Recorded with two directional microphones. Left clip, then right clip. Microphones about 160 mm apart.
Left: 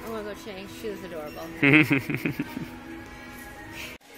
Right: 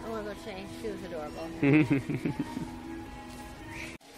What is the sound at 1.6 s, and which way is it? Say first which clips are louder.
Speech: left 6 dB; 5° left (ahead or behind).